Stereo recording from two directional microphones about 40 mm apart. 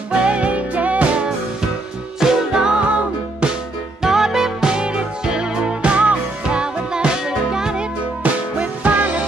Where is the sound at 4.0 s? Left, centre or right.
Centre.